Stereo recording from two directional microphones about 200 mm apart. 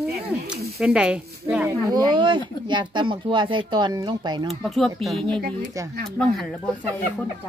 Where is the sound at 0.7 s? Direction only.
5° right (ahead or behind).